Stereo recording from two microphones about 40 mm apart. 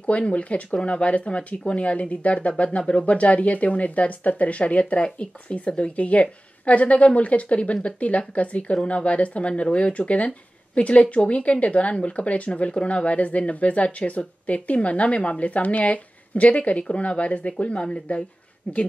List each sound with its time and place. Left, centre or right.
0.3 s speech: left